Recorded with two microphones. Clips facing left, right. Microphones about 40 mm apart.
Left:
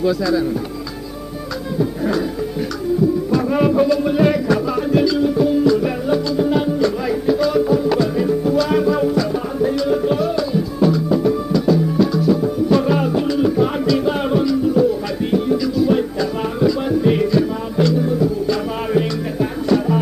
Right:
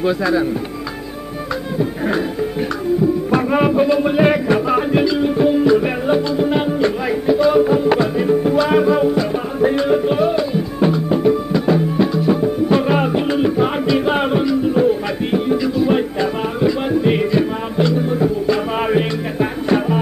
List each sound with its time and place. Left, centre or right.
0.0 s speech: right
1.8 s music: right
3.3 s music: right